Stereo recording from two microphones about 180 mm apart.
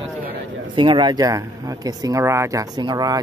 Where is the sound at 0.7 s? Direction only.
25° right (ahead or behind).